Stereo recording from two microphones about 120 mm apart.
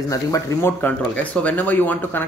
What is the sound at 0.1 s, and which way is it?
Speech, 25° left (ahead or behind).